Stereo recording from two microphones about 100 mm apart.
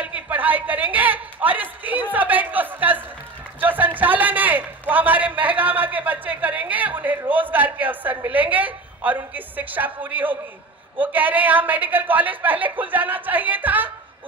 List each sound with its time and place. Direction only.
0.0 s a man's voice: 15° right (ahead or behind)